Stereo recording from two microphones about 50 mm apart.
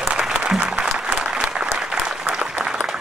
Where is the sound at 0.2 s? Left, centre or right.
Centre.